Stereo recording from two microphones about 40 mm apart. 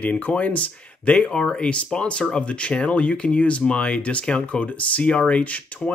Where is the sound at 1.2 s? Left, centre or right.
Left.